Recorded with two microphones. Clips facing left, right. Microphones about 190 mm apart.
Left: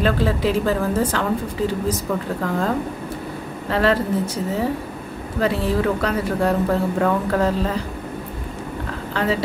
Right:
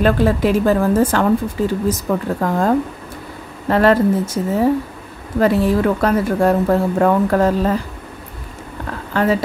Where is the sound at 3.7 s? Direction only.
50° right (ahead or behind).